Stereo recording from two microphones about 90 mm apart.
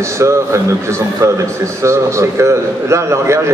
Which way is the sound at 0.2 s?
35° right (ahead or behind).